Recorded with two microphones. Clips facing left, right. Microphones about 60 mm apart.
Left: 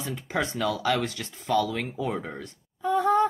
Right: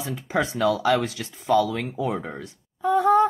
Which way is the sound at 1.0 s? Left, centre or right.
Centre.